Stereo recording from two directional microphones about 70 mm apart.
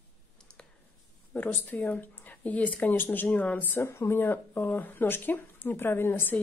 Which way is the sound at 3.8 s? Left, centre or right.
Left.